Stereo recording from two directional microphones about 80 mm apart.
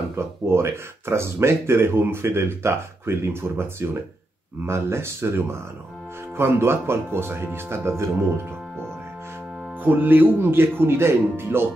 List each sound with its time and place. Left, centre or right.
0.1 s speech: right
4.6 s speech: right
9.8 s speech: right